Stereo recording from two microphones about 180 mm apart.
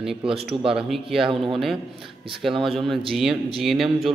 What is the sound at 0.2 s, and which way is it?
Speech, 30° right (ahead or behind).